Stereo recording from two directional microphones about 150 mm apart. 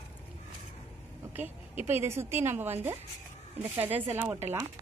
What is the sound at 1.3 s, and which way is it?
A woman's voice, 15° right (ahead or behind).